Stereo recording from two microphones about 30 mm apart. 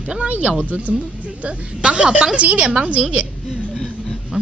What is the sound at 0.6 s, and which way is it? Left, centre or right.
Speech, right.